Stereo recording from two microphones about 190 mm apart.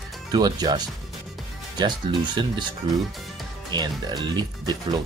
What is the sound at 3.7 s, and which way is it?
Speech, 20° right (ahead or behind).